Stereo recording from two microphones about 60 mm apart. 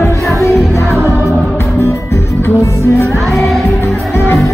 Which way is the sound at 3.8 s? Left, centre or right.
Left.